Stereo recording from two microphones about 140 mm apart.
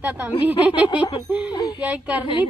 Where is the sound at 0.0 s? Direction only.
10° right (ahead or behind).